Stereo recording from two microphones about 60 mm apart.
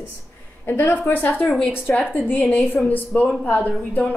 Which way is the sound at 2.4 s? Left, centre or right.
Centre.